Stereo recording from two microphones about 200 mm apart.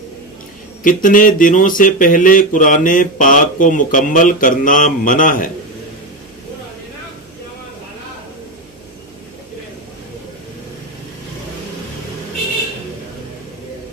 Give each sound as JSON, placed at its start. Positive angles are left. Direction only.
{"t": 0.8, "sound": "speech", "side_deg": 40}